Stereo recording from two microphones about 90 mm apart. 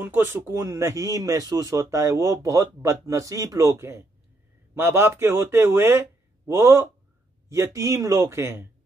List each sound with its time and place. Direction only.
0.0 s speech: 25° right (ahead or behind)